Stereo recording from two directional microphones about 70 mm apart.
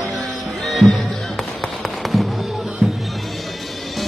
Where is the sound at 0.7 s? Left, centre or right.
Centre.